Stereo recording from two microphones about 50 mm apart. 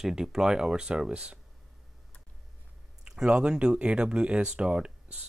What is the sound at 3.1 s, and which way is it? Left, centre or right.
Speech, centre.